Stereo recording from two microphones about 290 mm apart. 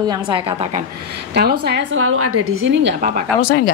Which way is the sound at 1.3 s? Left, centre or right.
Right.